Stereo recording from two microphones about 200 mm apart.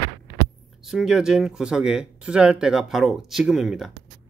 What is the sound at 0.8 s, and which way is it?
Speech, centre (ahead or behind).